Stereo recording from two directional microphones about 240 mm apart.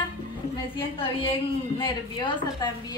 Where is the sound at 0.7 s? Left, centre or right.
Left.